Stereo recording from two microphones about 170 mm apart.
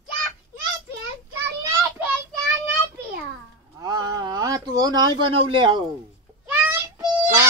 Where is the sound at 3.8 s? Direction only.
20° right (ahead or behind).